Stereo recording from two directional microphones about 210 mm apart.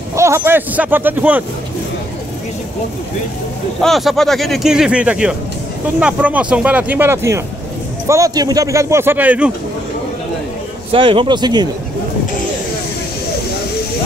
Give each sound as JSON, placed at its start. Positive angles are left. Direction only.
{"t": 0.1, "sound": "speech", "side_deg": -15}
{"t": 3.8, "sound": "speech", "side_deg": 0}
{"t": 10.9, "sound": "a man's voice", "side_deg": -25}